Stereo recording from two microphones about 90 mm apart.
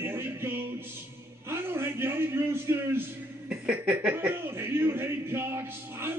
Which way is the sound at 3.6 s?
15° right (ahead or behind).